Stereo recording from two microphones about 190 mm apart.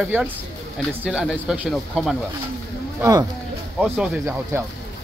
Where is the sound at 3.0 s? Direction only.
20° right (ahead or behind).